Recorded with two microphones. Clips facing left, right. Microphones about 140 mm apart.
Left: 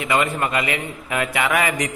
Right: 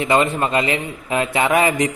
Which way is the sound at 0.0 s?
30° right (ahead or behind).